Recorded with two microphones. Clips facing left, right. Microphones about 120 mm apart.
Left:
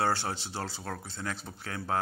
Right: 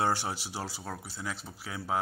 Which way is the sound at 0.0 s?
15° right (ahead or behind).